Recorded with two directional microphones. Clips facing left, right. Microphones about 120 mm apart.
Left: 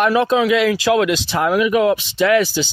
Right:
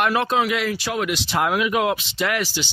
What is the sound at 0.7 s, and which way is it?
Speech, 90° left.